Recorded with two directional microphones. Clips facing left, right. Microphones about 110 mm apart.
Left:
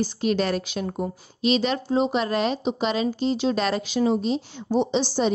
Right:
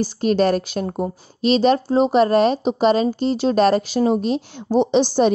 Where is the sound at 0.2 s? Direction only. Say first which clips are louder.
Right 8 dB; 45° right (ahead or behind).